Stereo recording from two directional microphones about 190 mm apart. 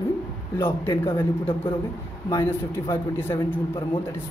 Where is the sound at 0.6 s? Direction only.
10° left (ahead or behind).